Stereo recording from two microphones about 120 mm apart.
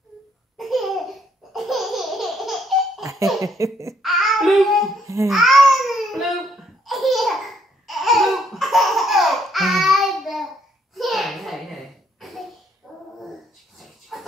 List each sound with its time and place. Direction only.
0.6 s laughter: centre (ahead or behind)
3.0 s laughter: 25° right (ahead or behind)
3.9 s speech: centre (ahead or behind)
5.0 s speech: 25° right (ahead or behind)
5.3 s babbling: centre (ahead or behind)
11.0 s a sound: centre (ahead or behind)
12.9 s dog: centre (ahead or behind)
14.1 s a sound: 5° left (ahead or behind)